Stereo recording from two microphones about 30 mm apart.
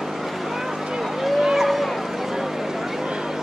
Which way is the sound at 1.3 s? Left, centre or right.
Centre.